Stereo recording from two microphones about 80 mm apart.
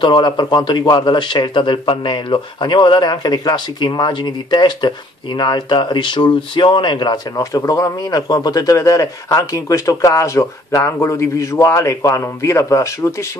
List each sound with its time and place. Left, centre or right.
0.0 s a man's voice: left
7.5 s a man's voice: left